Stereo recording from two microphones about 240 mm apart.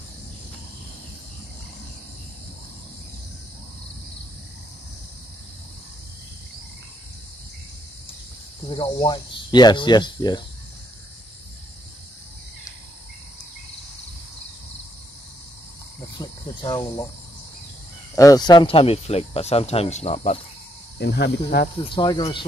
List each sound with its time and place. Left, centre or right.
8.6 s speech: left
16.2 s cricket: centre
18.1 s speech: centre
21.0 s speech: left
21.8 s speech: centre